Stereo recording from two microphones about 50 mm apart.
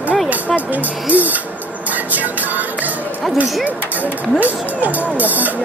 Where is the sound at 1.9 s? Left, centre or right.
Right.